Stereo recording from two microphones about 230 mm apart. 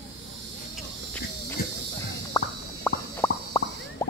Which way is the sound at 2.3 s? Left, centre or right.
Centre.